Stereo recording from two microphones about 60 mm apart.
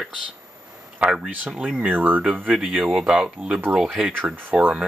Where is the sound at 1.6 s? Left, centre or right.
Right.